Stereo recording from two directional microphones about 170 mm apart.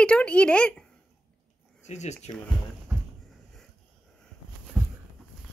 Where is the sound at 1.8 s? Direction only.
40° left (ahead or behind).